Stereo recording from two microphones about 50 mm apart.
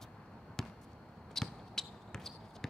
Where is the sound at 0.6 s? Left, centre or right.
Centre.